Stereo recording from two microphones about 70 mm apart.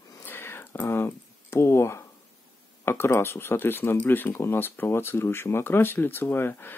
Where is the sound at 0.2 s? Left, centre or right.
Left.